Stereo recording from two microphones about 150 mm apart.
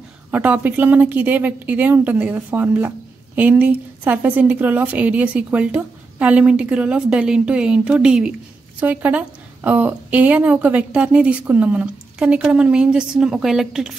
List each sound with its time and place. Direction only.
0.3 s a woman's voice: 10° right (ahead or behind)